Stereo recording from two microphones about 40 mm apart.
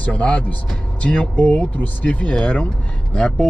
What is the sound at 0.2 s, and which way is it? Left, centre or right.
A man's voice, left.